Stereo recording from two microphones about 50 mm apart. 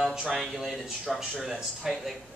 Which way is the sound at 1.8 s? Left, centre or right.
Centre.